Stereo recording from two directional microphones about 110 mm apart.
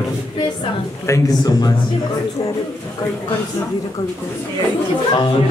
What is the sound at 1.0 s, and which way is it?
Speech, 30° left (ahead or behind).